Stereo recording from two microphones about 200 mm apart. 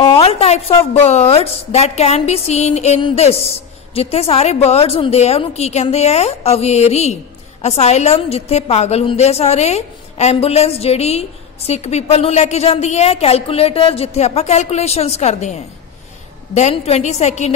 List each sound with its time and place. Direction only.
0.0 s a woman's voice: 25° left (ahead or behind)
16.5 s a woman's voice: 30° left (ahead or behind)